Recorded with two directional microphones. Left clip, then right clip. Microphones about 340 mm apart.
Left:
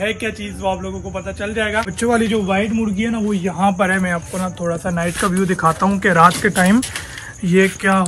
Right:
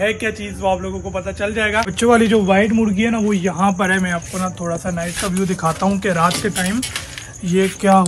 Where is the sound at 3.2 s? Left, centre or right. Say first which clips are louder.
Left 3 dB; centre.